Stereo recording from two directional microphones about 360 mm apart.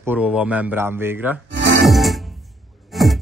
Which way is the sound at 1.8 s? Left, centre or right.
Centre.